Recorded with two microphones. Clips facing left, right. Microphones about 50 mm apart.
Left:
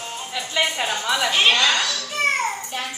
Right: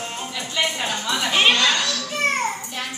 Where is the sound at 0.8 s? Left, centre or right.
Centre.